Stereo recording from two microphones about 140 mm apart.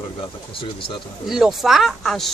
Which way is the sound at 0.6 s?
40° left (ahead or behind).